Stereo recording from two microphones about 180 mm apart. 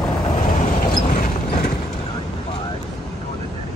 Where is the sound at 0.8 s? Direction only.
45° left (ahead or behind).